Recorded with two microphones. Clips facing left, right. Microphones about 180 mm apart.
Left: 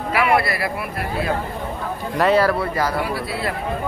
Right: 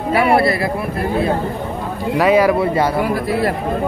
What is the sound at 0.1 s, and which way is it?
A man's voice, 30° right (ahead or behind).